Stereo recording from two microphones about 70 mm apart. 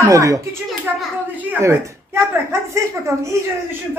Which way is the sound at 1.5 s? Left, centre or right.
Right.